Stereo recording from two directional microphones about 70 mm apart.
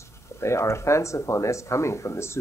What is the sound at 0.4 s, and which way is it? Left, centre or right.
Speech, left.